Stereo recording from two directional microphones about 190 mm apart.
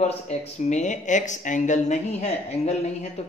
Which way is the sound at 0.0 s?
35° left (ahead or behind).